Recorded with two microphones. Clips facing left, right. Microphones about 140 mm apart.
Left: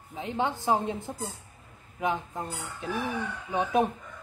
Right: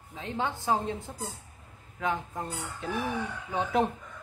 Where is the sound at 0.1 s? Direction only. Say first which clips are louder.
Left 3 dB; 20° left (ahead or behind).